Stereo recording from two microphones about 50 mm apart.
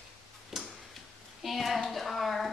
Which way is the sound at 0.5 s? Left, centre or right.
Centre.